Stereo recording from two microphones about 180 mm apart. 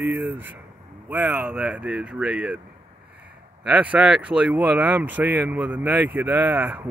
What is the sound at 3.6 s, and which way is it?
Speech, 10° right (ahead or behind).